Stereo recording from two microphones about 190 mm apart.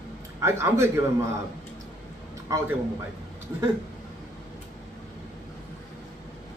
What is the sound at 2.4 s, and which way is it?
Speech, 15° right (ahead or behind).